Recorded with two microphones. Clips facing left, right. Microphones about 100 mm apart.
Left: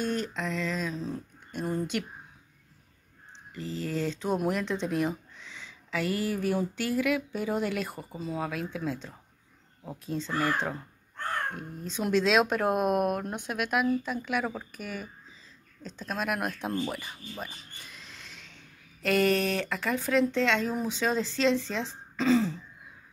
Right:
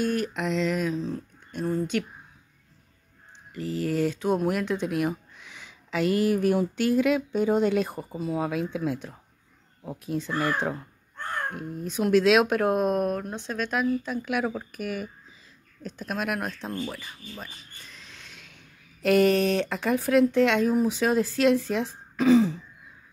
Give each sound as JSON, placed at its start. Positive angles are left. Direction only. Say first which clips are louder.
{"t": 0.3, "sound": "speech", "louder": "right 6 dB", "side_deg": -15}
{"t": 0.9, "sound": "speech", "louder": "right 4 dB", "side_deg": 0}
{"t": 3.9, "sound": "speech", "louder": "right 4 dB", "side_deg": -10}
{"t": 16.3, "sound": "speech", "louder": "left 1 dB", "side_deg": 10}
{"t": 17.9, "sound": "owl", "louder": "even", "side_deg": 0}
{"t": 19.0, "sound": "speech", "louder": "right 5 dB", "side_deg": -20}